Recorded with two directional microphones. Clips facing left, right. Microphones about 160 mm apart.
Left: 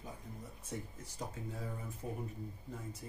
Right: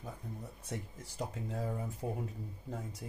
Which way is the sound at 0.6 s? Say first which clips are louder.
Right 2 dB; 85° right.